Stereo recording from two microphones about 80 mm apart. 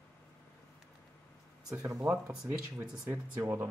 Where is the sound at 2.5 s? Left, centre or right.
Right.